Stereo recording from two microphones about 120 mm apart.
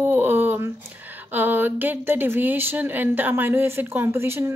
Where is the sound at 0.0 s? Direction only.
20° right (ahead or behind).